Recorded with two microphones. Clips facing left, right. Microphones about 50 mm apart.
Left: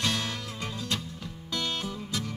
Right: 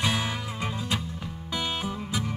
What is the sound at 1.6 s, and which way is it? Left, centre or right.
Music, centre.